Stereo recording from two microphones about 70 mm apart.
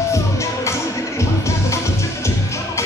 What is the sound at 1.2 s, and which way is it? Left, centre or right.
Music, left.